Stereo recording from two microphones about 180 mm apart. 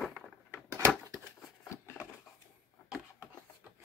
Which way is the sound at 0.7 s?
15° right (ahead or behind).